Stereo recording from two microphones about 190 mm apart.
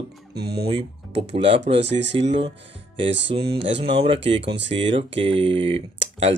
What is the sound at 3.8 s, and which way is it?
Mantra, 30° right (ahead or behind).